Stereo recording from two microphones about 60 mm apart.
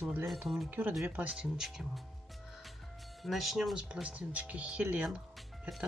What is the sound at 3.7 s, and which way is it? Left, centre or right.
Speech, centre.